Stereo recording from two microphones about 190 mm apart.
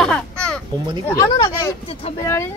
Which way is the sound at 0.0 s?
5° left (ahead or behind).